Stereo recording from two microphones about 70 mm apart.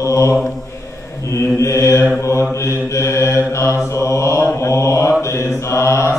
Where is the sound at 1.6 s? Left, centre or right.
Left.